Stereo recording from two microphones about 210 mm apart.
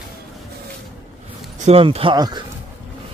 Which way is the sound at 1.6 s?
30° right (ahead or behind).